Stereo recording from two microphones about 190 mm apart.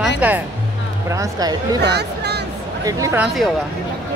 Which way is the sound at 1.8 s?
60° right (ahead or behind).